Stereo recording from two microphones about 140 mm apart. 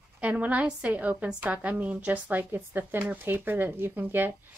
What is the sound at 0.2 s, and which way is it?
A woman's voice, 10° right (ahead or behind).